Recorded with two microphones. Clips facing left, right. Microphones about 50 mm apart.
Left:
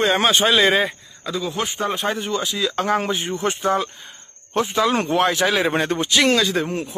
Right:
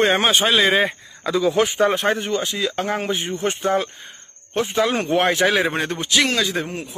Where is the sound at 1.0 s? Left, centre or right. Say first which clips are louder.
Right 6 dB; right.